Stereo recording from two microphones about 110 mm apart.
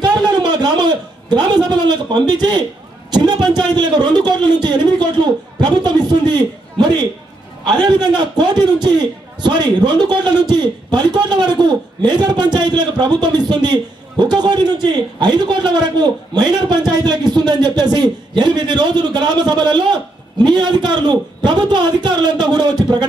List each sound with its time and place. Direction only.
0.0 s a man's voice: 40° right (ahead or behind)